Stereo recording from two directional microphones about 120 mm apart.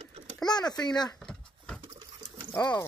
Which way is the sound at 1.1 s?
5° left (ahead or behind).